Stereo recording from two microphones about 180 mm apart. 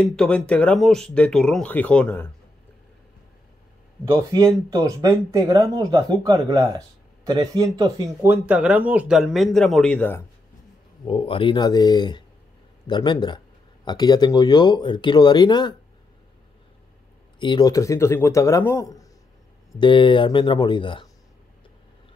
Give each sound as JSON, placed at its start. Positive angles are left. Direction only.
{"t": 0.1, "sound": "speech", "side_deg": 5}
{"t": 4.0, "sound": "speech", "side_deg": -15}
{"t": 11.1, "sound": "speech", "side_deg": 30}
{"t": 17.4, "sound": "speech", "side_deg": 25}
{"t": 19.8, "sound": "speech", "side_deg": 25}